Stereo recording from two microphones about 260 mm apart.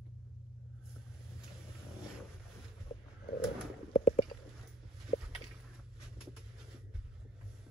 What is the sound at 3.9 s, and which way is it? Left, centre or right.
Stomach rumble, left.